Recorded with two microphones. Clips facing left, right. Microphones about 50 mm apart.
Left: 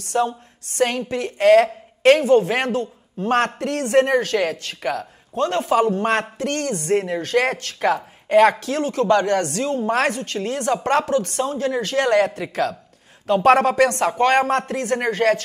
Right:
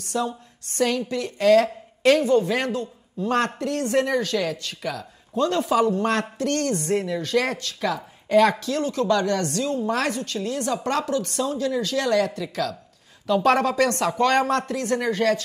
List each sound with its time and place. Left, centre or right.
0.0 s a woman's voice: left
5.6 s speech: left
6.3 s a sound: left
6.8 s a woman's voice: left